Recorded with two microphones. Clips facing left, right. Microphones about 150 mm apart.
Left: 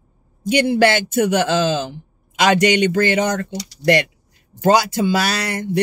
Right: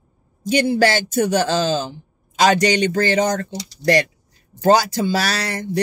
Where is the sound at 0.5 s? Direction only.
35° right (ahead or behind).